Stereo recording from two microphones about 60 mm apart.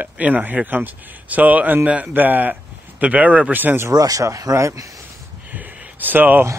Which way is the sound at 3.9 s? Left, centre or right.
Right.